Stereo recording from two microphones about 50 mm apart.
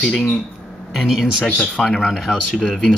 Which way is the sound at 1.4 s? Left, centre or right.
Centre.